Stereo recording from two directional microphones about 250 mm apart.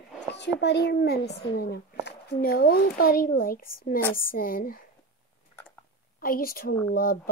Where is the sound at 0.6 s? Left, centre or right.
Left.